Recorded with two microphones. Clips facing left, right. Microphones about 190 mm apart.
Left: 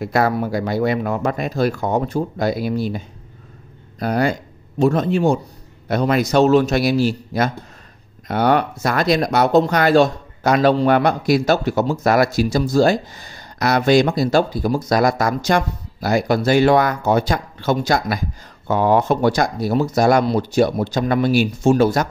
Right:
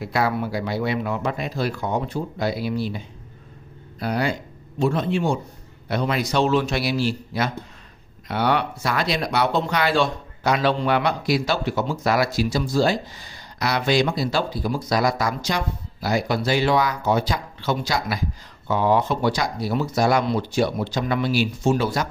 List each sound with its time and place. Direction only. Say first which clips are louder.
0.0 s speech: left 5 dB; 45° left (ahead or behind)
4.0 s speech: left 5 dB; 45° left (ahead or behind)